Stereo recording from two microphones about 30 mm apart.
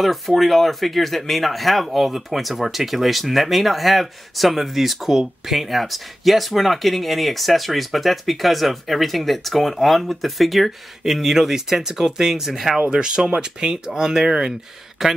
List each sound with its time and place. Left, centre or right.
0.0 s speech: centre
11.3 s speech: centre
12.9 s speech: right
15.0 s speech: centre